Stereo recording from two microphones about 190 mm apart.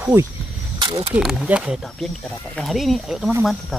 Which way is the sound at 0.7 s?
25° right (ahead or behind).